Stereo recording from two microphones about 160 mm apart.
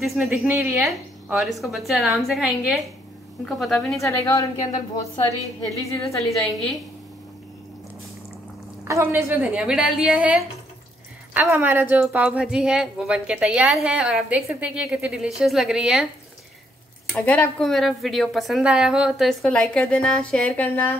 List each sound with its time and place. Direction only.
0.0 s speech: centre (ahead or behind)
0.5 s a woman's voice: 15° right (ahead or behind)
0.7 s speech: centre (ahead or behind)
4.0 s a woman's voice: 20° left (ahead or behind)
6.0 s speech: centre (ahead or behind)
8.8 s a woman's voice: 15° right (ahead or behind)
11.5 s speech: 15° right (ahead or behind)
17.1 s speech: 10° left (ahead or behind)